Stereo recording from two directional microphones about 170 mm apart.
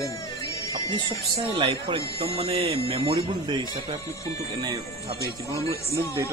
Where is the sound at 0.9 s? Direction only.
30° right (ahead or behind).